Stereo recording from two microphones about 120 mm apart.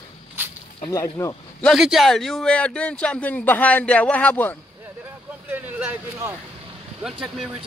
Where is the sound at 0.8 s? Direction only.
30° left (ahead or behind).